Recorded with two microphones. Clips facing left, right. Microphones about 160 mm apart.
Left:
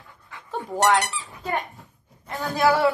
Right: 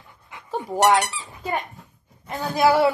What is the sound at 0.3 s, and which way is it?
Dog, 15° right (ahead or behind).